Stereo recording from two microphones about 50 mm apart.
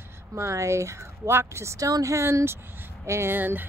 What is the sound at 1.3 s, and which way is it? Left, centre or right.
Speech, right.